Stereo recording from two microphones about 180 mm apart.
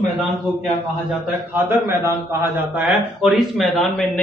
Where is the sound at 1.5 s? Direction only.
10° right (ahead or behind).